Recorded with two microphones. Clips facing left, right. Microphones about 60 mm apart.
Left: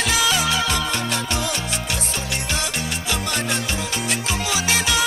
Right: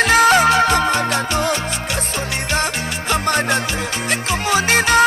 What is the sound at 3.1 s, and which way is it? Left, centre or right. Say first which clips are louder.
Music: right 8 dB; right.